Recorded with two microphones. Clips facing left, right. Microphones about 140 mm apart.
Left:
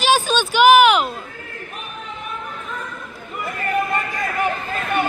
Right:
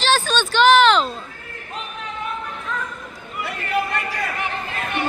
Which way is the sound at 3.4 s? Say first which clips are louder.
Left 2 dB; 80° right.